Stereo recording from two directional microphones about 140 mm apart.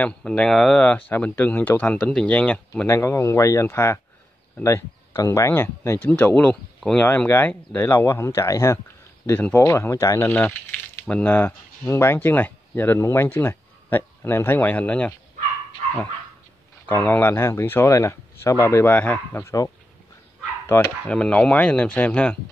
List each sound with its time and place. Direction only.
0.0 s speech: 5° left (ahead or behind)
16.9 s speech: 15° left (ahead or behind)
20.7 s speech: 15° left (ahead or behind)